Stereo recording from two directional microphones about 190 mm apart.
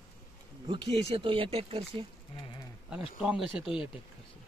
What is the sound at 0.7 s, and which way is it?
Speech, 25° right (ahead or behind).